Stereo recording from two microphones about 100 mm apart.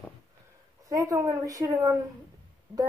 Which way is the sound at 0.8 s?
35° right (ahead or behind).